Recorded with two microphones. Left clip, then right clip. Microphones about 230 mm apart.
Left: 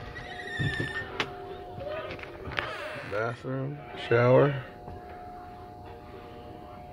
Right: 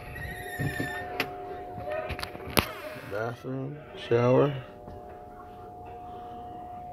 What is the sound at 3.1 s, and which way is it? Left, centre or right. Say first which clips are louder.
Speech: left 1 dB; centre.